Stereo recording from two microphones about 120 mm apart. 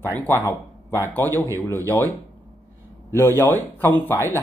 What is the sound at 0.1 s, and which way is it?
Speech, 20° left (ahead or behind).